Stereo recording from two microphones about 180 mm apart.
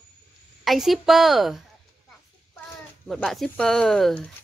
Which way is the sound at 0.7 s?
Centre (ahead or behind).